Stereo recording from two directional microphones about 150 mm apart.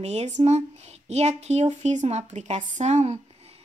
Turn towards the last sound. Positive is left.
turn(degrees=-50)  # may be behind; listen again after turning